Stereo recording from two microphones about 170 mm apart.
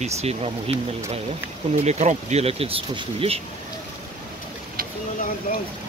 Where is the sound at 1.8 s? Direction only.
40° right (ahead or behind).